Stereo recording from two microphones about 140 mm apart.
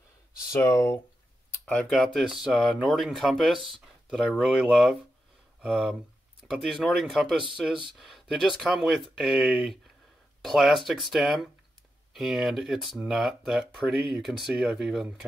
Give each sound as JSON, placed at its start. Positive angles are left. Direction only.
{"t": 0.5, "sound": "speech", "side_deg": 25}
{"t": 1.7, "sound": "speech", "side_deg": 5}